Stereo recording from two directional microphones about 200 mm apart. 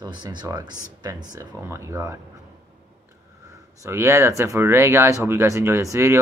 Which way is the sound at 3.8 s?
15° right (ahead or behind).